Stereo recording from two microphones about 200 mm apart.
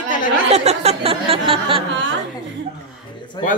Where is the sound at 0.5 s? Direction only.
30° right (ahead or behind).